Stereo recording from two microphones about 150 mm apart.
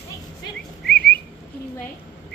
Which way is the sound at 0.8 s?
90° left.